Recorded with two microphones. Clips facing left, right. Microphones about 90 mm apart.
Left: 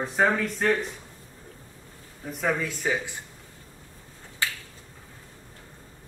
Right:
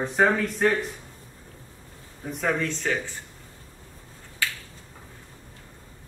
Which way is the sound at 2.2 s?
Centre (ahead or behind).